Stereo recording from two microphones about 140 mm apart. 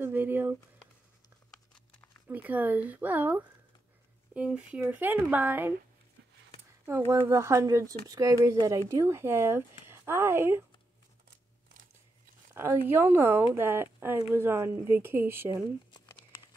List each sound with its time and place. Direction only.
0.0 s a sound: 15° right (ahead or behind)
2.2 s speech: 10° right (ahead or behind)
7.1 s speech: 20° right (ahead or behind)
12.5 s speech: 15° right (ahead or behind)